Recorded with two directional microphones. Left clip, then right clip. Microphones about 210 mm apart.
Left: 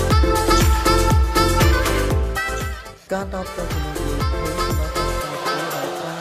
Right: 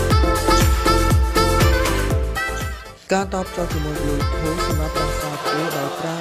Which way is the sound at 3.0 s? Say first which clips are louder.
Right 5 dB; 25° right (ahead or behind).